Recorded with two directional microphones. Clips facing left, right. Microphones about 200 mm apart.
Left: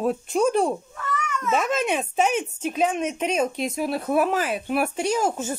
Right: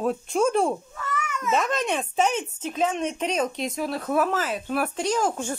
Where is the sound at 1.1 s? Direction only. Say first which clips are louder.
Left 1 dB; 5° right (ahead or behind).